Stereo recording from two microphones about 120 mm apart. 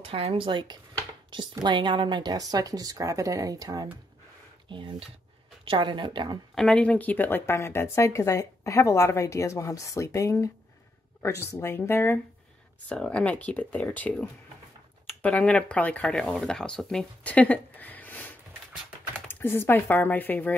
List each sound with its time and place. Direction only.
0.0 s speech: 55° right (ahead or behind); by 3.9 s 30° right (ahead or behind)
4.6 s speech: 45° right (ahead or behind)
6.5 s speech: 5° left (ahead or behind)